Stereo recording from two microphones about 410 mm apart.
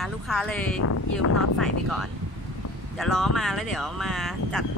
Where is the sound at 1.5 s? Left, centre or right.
Centre.